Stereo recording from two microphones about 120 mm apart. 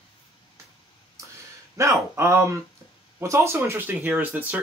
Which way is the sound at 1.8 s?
25° right (ahead or behind).